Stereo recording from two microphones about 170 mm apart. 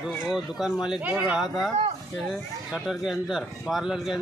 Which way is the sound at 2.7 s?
Centre (ahead or behind).